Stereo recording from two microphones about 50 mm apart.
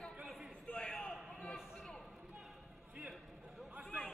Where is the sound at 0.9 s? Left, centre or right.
Centre.